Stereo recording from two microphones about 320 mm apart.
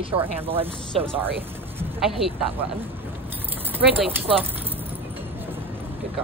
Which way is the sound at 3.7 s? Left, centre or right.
Centre.